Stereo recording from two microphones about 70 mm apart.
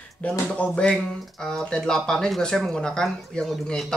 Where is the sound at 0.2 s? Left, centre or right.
Centre.